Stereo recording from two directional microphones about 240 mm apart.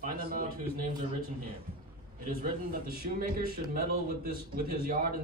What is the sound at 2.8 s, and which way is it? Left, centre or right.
A man's voice, right.